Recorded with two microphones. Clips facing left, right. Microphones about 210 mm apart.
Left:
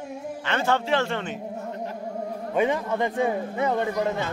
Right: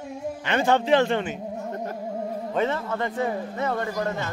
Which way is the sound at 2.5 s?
15° left (ahead or behind).